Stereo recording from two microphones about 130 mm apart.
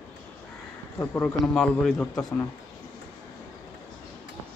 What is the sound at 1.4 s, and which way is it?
Speech, 5° left (ahead or behind).